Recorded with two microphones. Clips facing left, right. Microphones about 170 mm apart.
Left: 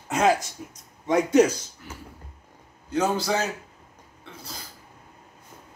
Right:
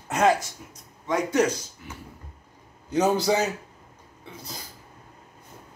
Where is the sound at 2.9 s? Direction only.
20° right (ahead or behind).